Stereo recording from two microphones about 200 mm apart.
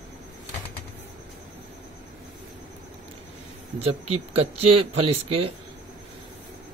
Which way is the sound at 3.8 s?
30° right (ahead or behind).